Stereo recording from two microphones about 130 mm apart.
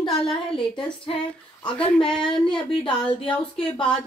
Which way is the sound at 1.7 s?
5° left (ahead or behind).